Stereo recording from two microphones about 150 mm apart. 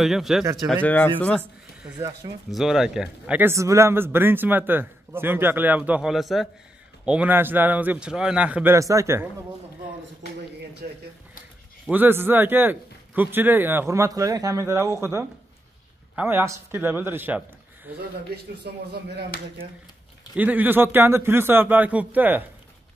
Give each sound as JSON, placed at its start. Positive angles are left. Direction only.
{"t": 0.0, "sound": "speech", "side_deg": 0}
{"t": 0.8, "sound": "speech", "side_deg": 10}
{"t": 2.0, "sound": "speech", "side_deg": -25}
{"t": 2.5, "sound": "speech", "side_deg": 0}
{"t": 8.7, "sound": "speech", "side_deg": -20}
{"t": 11.8, "sound": "speech", "side_deg": -10}
{"t": 17.9, "sound": "speech", "side_deg": -90}
{"t": 20.3, "sound": "speech", "side_deg": -10}